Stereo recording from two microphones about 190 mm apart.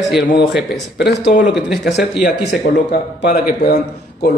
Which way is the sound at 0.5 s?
Centre (ahead or behind).